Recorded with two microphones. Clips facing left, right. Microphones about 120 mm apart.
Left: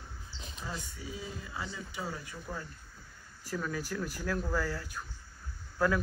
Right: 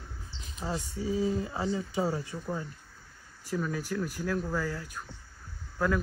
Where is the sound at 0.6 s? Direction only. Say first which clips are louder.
Right 8 dB; 35° right (ahead or behind).